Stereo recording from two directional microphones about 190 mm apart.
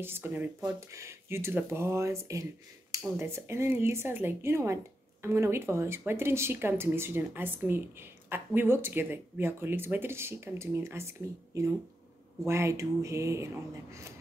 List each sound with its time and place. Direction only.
0.0 s speech: 10° right (ahead or behind)